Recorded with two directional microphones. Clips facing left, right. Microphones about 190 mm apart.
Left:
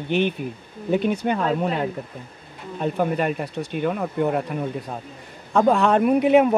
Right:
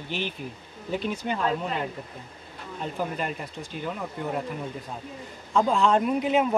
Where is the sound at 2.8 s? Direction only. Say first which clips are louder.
Left 8 dB; 60° left (ahead or behind).